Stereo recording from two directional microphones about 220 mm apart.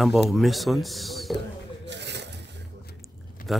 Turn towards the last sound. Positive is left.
turn(degrees=0)  # may be behind; listen again after turning